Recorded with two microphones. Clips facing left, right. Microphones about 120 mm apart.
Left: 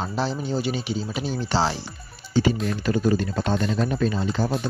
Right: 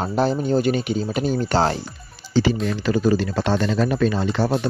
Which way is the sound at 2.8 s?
90° right.